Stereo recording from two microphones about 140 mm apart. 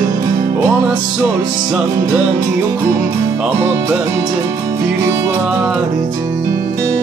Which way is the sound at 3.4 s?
20° right (ahead or behind).